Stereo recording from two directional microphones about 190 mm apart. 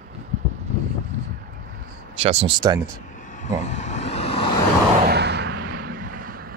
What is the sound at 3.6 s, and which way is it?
Vehicle, 40° left (ahead or behind).